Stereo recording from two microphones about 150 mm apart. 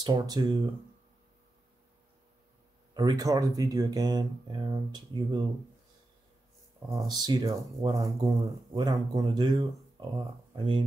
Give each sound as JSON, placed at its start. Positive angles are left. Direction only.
{"t": 0.0, "sound": "speech", "side_deg": -25}
{"t": 2.9, "sound": "speech", "side_deg": -25}
{"t": 6.9, "sound": "speech", "side_deg": -25}